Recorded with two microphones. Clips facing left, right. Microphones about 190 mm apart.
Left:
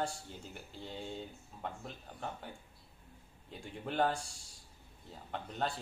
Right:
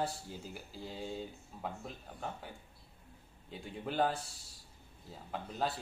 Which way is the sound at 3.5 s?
Centre (ahead or behind).